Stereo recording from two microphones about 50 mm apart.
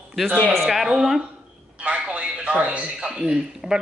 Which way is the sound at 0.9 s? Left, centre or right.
Centre.